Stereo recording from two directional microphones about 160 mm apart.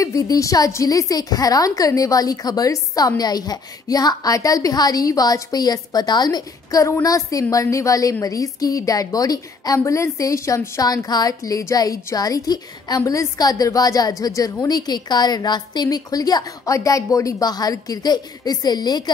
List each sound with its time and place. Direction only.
0.0 s a woman's voice: 20° left (ahead or behind)